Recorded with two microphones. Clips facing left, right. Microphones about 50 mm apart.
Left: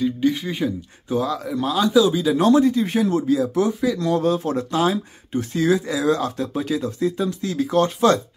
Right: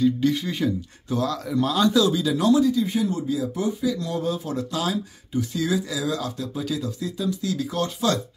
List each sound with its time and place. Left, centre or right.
0.0 s speech: centre
2.0 s speech: left
2.3 s speech: left